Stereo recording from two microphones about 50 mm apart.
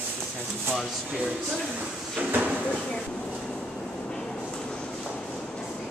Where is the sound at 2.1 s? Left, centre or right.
Right.